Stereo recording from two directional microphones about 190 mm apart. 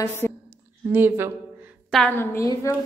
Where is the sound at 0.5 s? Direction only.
10° right (ahead or behind).